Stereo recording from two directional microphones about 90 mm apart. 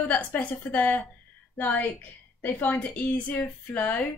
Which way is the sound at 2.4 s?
20° left (ahead or behind).